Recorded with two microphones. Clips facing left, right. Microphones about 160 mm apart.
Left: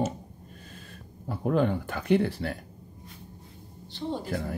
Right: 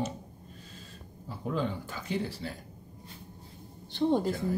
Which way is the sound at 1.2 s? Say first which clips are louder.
Left 7 dB; 60° left (ahead or behind).